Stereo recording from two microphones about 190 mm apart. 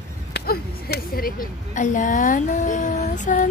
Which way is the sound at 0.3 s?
55° left (ahead or behind).